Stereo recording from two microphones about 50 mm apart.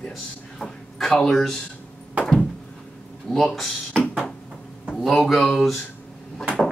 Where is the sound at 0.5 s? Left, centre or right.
Centre.